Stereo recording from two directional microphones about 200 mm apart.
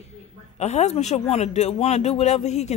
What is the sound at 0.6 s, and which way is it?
A man's voice, 35° left (ahead or behind).